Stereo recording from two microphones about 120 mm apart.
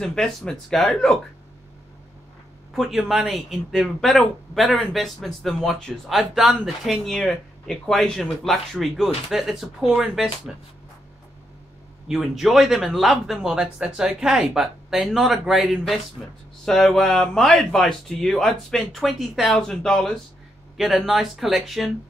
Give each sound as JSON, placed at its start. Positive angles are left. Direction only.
{"t": 0.0, "sound": "speech", "side_deg": 5}
{"t": 2.7, "sound": "speech", "side_deg": 0}
{"t": 12.1, "sound": "speech", "side_deg": 0}